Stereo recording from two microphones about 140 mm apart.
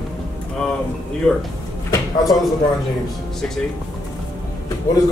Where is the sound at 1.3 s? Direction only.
10° left (ahead or behind).